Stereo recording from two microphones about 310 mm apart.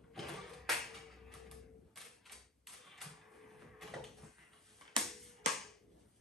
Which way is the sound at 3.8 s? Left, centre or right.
Centre.